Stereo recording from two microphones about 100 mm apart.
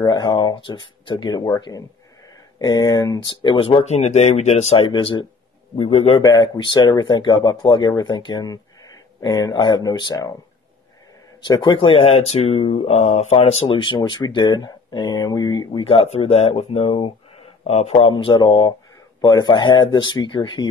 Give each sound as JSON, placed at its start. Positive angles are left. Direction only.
{"t": 0.0, "sound": "speech", "side_deg": 40}
{"t": 3.6, "sound": "speech", "side_deg": 80}
{"t": 4.8, "sound": "speech", "side_deg": 50}
{"t": 5.8, "sound": "a man's voice", "side_deg": 75}
{"t": 6.2, "sound": "speech", "side_deg": 40}
{"t": 6.6, "sound": "speech", "side_deg": 50}
{"t": 8.5, "sound": "speech", "side_deg": 40}
{"t": 11.4, "sound": "speech", "side_deg": 45}
{"t": 11.8, "sound": "speech", "side_deg": 75}
{"t": 15.8, "sound": "speech", "side_deg": 70}
{"t": 18.1, "sound": "speech", "side_deg": 50}